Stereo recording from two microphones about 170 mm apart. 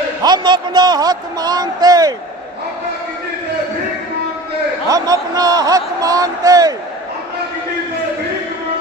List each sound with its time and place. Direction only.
0.2 s speech: 25° right (ahead or behind)
4.8 s speech: 20° right (ahead or behind)